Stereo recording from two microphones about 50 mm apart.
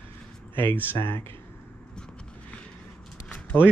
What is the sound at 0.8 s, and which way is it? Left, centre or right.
Speech, left.